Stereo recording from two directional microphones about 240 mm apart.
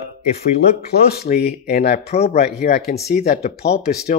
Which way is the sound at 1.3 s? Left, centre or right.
Left.